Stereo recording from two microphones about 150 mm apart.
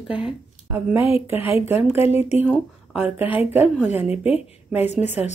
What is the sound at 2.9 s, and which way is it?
Speech, 10° right (ahead or behind).